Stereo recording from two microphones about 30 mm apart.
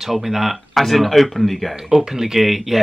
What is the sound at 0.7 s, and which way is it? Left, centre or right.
Speech, centre.